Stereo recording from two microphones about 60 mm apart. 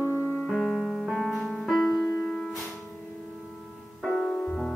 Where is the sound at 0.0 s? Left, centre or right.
Right.